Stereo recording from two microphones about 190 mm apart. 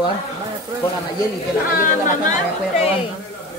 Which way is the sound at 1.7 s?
45° left (ahead or behind).